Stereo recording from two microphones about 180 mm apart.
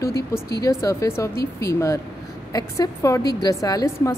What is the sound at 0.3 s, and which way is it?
A woman's voice, 15° left (ahead or behind).